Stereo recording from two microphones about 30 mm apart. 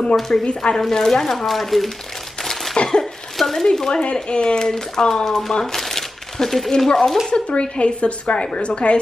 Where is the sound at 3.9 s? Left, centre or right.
Left; by 6.9 s centre.